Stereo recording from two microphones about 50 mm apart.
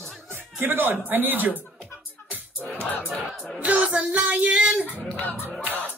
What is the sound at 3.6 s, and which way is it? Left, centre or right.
Music, right.